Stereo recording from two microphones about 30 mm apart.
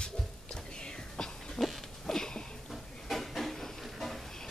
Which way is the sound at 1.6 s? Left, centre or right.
Left.